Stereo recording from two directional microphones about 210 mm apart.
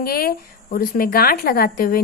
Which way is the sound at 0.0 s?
45° left (ahead or behind).